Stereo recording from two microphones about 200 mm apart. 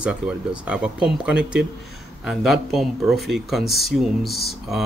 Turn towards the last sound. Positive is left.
turn(degrees=0)  # may be behind; listen again after turning